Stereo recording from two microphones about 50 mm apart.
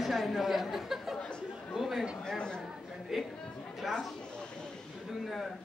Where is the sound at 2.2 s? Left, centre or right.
Centre.